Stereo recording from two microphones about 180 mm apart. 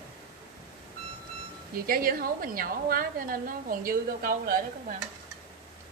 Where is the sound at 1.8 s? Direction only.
55° right (ahead or behind).